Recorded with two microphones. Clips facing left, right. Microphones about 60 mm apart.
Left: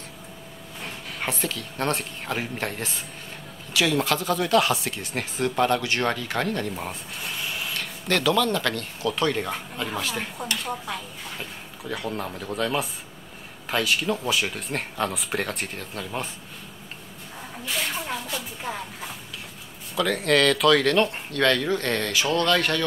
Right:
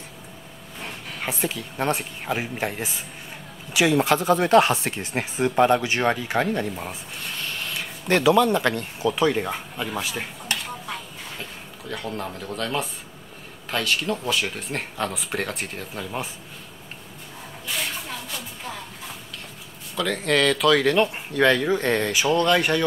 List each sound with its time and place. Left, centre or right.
1.4 s speech: centre
3.7 s speech: right
6.7 s a sound: centre
8.1 s speech: right
11.9 s speech: centre
20.0 s speech: centre